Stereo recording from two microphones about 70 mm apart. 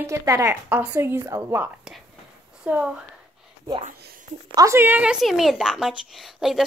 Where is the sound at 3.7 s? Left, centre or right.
Right.